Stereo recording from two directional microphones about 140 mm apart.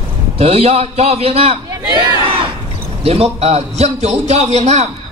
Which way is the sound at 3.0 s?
45° right (ahead or behind).